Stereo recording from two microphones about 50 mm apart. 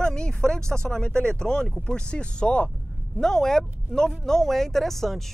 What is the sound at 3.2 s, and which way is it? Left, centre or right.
Speech, centre.